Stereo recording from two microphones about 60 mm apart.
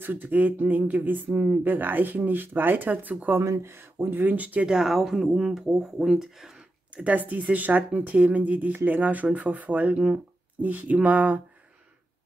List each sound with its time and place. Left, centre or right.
0.0 s speech: right
3.3 s speech: right
4.6 s speech: centre
7.0 s speech: right